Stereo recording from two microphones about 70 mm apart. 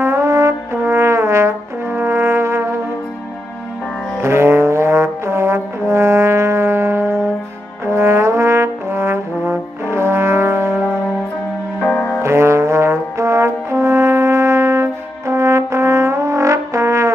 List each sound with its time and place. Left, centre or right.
0.0 s brass instrument: right
4.2 s brass instrument: right
7.8 s trombone: right
12.2 s brass instrument: right